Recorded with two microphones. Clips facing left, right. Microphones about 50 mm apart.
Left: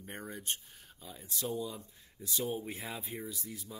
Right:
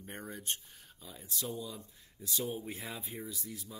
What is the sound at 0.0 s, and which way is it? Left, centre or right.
Speech, centre.